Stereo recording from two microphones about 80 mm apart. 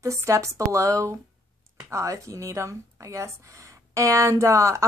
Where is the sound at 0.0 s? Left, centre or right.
Right.